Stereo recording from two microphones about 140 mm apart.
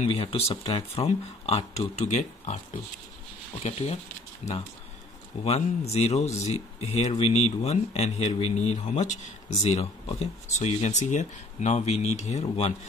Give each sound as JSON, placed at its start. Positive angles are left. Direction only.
{"t": 0.2, "sound": "speech", "side_deg": 40}
{"t": 5.4, "sound": "speech", "side_deg": 50}